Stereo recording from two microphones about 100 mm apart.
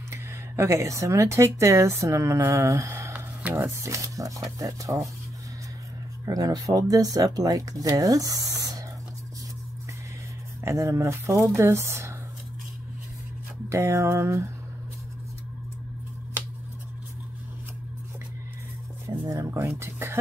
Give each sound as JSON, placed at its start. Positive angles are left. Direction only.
{"t": 0.1, "sound": "speech", "side_deg": -25}
{"t": 6.2, "sound": "speech", "side_deg": -35}
{"t": 10.6, "sound": "speech", "side_deg": -25}
{"t": 13.7, "sound": "speech", "side_deg": -30}
{"t": 19.0, "sound": "speech", "side_deg": -35}